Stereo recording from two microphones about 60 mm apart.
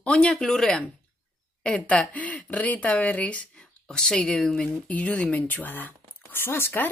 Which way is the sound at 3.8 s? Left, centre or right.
Centre.